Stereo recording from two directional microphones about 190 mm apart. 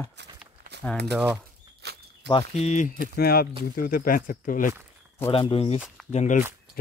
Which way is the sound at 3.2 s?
55° left (ahead or behind).